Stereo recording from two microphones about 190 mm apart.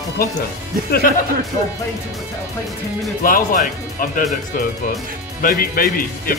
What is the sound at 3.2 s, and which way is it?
Speech, 45° left (ahead or behind).